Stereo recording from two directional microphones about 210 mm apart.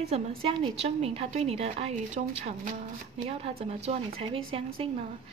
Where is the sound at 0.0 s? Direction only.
30° right (ahead or behind).